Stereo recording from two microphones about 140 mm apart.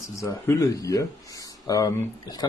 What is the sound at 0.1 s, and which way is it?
Speech, 20° left (ahead or behind).